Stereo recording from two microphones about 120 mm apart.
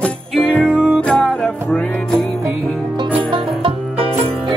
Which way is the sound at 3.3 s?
50° right (ahead or behind).